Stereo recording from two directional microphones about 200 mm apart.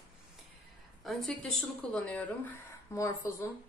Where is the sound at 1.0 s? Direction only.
Centre (ahead or behind).